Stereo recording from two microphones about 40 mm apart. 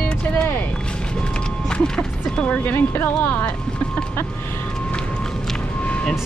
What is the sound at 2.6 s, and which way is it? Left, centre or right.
Speech, left.